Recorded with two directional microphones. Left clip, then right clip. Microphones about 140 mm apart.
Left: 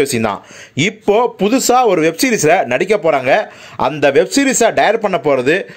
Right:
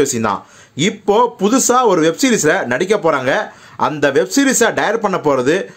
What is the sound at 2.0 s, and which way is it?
Speech, 25° left (ahead or behind).